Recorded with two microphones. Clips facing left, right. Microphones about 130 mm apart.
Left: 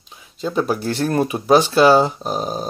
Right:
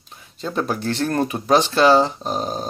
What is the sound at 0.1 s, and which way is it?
Speech, centre (ahead or behind).